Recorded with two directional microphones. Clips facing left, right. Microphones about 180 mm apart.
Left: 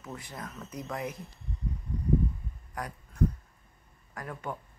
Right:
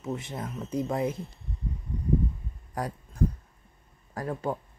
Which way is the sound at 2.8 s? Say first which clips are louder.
Right 6 dB; 30° right (ahead or behind).